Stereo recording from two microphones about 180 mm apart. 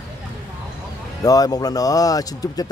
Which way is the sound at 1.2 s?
20° left (ahead or behind).